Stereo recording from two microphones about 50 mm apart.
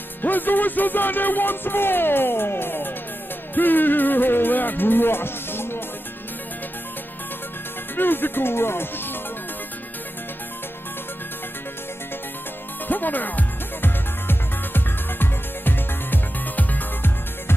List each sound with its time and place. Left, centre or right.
0.2 s speech: left
3.5 s music: left
7.9 s speech: left
12.8 s music: left